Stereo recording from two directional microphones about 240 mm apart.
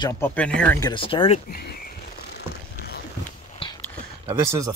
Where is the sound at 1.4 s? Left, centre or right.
Left.